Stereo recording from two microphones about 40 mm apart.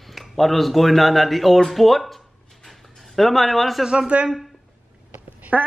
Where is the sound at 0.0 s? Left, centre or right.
Centre.